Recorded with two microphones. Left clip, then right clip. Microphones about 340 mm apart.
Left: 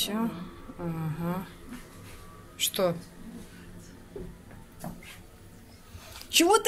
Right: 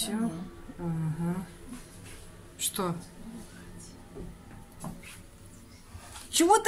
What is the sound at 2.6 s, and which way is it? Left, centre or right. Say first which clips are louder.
Speech: left 6 dB; centre.